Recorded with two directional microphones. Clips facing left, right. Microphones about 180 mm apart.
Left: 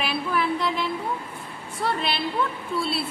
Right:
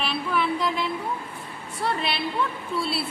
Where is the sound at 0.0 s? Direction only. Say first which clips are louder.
Even; 5° left (ahead or behind).